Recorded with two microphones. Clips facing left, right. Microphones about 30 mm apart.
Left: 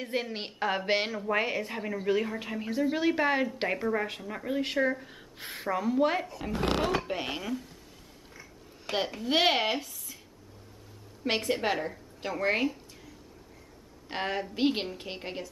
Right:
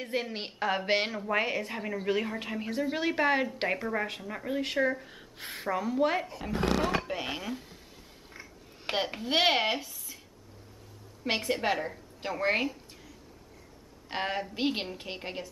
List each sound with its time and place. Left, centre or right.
0.0 s a woman's voice: centre
8.9 s a woman's voice: right
9.2 s speech: centre
11.2 s a woman's voice: centre